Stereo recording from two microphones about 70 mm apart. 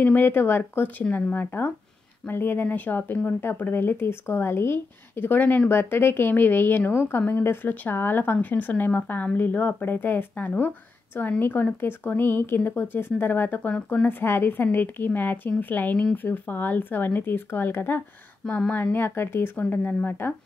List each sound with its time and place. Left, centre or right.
0.0 s speech: left
19.6 s speech: left